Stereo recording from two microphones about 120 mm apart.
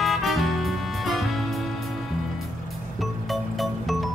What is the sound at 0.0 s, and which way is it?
Music, centre (ahead or behind).